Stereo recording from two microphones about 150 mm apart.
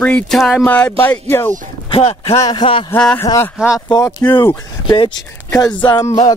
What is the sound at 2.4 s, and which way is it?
Speech, 30° left (ahead or behind).